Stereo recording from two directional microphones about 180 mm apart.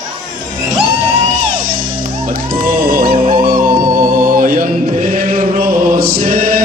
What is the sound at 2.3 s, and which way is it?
Music, 55° right (ahead or behind).